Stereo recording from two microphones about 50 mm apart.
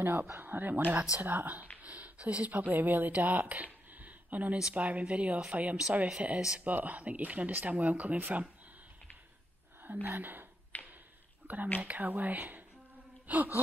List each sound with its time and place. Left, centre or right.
0.0 s speech: right
10.0 s speech: right
10.7 s a sound: left
11.4 s speech: right